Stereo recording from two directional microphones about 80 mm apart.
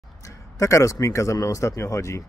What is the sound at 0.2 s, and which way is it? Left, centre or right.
A man's voice, left.